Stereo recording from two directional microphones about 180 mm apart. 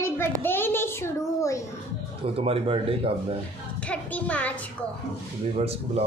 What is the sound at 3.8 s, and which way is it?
Speech, 10° left (ahead or behind).